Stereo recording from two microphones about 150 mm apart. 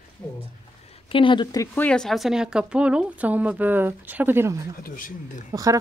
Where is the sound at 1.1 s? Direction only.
35° left (ahead or behind).